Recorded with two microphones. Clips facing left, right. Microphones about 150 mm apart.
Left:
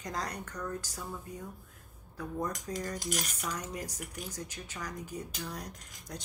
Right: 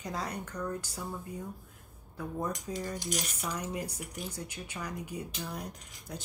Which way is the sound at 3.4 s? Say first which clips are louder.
Right 2 dB; 10° right (ahead or behind).